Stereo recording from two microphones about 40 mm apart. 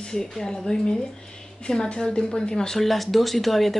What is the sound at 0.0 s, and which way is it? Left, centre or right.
Speech, centre.